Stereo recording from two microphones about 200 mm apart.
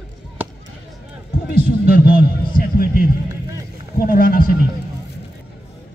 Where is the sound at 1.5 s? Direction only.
50° left (ahead or behind).